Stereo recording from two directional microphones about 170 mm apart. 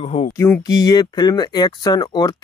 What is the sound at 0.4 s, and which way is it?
Speech, 20° left (ahead or behind).